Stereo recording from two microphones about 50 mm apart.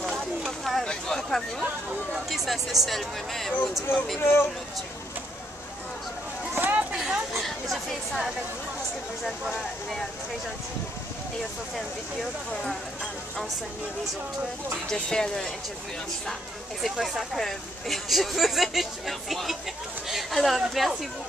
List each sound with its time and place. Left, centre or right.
0.5 s a sound: centre
0.8 s speech: centre
1.6 s speech: right
2.2 s speech: centre
4.2 s speech: left
6.5 s a sound: right
7.0 s a sound: centre
7.4 s chatter: centre
11.7 s speech: centre
14.9 s speech: centre
16.8 s speech: centre